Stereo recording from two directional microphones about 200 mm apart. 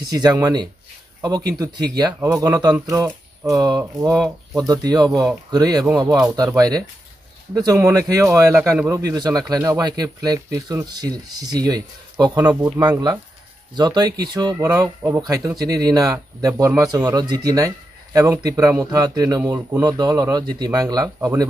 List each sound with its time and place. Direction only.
0.0 s speech: 20° right (ahead or behind)
2.0 s speech: 15° right (ahead or behind)